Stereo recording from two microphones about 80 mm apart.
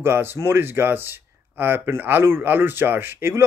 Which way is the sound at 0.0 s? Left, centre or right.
Right.